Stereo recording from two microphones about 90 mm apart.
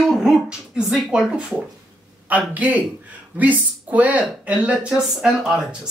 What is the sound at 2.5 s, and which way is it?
Speech, 20° right (ahead or behind).